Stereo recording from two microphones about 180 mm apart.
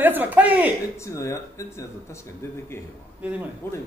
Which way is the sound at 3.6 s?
15° left (ahead or behind).